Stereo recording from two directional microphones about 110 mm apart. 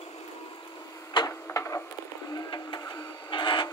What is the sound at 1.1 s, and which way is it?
Printer, 30° left (ahead or behind).